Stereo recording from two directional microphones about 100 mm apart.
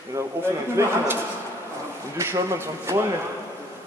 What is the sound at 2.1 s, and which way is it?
Speech, 30° right (ahead or behind).